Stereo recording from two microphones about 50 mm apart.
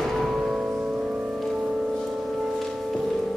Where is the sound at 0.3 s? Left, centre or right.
Centre.